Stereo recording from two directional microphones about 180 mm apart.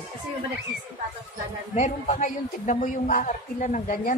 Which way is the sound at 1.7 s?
40° left (ahead or behind).